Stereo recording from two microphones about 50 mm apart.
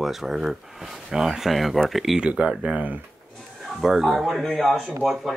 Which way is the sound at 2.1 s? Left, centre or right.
Right.